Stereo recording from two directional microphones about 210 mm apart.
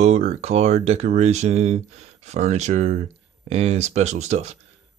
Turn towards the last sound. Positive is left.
turn(degrees=-30)  # may be behind; listen again after turning